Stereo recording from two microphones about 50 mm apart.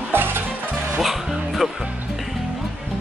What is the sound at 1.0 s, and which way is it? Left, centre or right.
Music, centre.